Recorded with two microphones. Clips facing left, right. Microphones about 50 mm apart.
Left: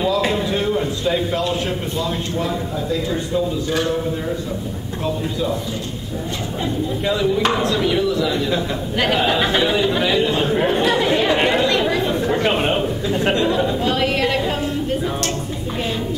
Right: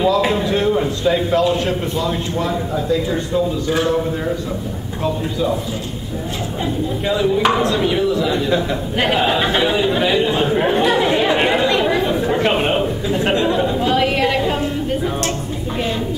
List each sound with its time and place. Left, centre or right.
0.0 s a man's voice: centre
5.0 s a man's voice: centre
6.6 s speech: centre
8.9 s a man's voice: centre
9.3 s speech: centre